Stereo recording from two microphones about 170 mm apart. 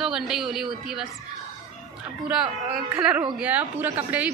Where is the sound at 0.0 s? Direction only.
Centre (ahead or behind).